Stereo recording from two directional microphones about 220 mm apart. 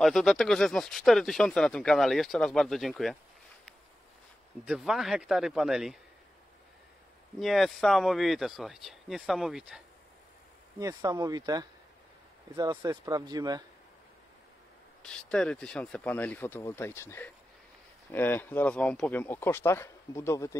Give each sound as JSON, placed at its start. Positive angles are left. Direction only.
{"t": 0.0, "sound": "speech", "side_deg": 0}
{"t": 4.6, "sound": "speech", "side_deg": -5}
{"t": 7.3, "sound": "speech", "side_deg": 0}
{"t": 10.8, "sound": "speech", "side_deg": -15}
{"t": 15.0, "sound": "speech", "side_deg": 5}